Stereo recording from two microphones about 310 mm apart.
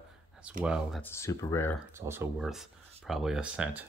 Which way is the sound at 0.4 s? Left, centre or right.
Centre.